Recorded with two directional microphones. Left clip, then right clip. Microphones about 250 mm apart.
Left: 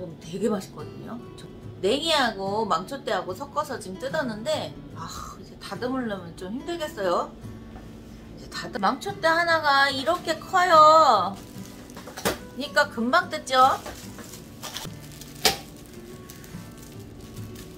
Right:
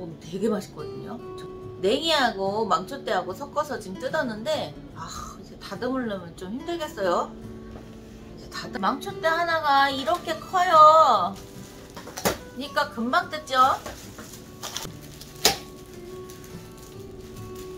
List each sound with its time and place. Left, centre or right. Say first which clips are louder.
0.3 s speech: even; centre
8.8 s a woman's voice: left 2 dB; left
12.5 s a woman's voice: left 3 dB; left